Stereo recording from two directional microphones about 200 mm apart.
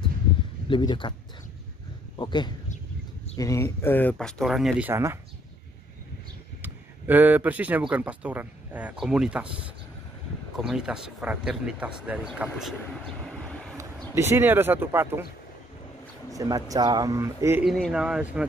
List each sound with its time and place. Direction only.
0.7 s speech: 25° left (ahead or behind)
2.1 s speech: 25° left (ahead or behind); by 5.2 s 10° right (ahead or behind)
6.6 s speech: 10° right (ahead or behind)
10.6 s speech: 5° right (ahead or behind)
13.7 s speech: 15° right (ahead or behind)
16.3 s speech: 15° right (ahead or behind)
17.6 s speech: centre (ahead or behind)